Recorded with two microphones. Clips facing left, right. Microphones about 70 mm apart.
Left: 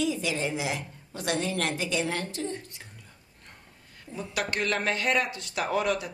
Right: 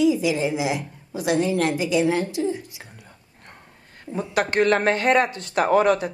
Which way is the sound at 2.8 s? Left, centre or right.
Right.